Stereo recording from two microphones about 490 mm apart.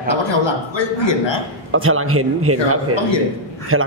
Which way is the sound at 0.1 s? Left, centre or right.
Left.